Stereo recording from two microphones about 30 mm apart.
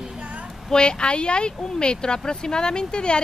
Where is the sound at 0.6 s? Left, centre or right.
Left.